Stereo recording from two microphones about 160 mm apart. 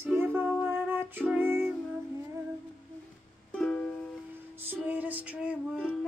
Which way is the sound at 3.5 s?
5° left (ahead or behind).